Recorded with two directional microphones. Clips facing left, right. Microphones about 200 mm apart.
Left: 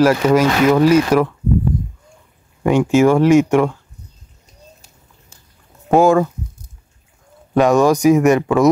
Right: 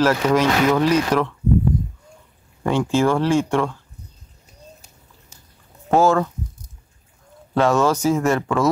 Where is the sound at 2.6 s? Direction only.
15° left (ahead or behind).